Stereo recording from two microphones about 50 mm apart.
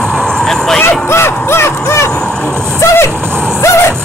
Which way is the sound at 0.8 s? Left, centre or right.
Left.